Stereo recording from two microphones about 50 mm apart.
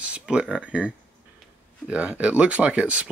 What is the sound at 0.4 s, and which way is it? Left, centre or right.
Speech, right.